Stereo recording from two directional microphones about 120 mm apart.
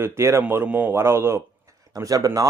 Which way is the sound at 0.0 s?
20° right (ahead or behind).